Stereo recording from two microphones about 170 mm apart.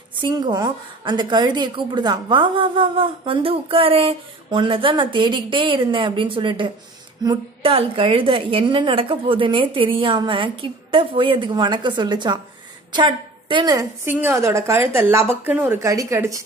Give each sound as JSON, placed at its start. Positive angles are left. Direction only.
{"t": 0.2, "sound": "a woman's voice", "side_deg": -25}